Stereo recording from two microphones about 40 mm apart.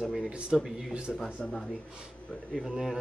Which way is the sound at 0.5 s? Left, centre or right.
Centre.